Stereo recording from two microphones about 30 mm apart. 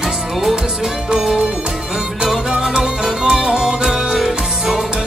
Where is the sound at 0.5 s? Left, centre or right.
Centre.